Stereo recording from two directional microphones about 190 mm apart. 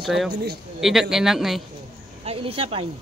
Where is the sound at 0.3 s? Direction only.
60° right (ahead or behind).